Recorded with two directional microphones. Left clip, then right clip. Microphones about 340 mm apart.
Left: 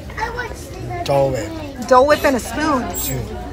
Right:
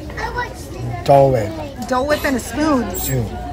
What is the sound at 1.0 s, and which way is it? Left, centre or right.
Speech, right.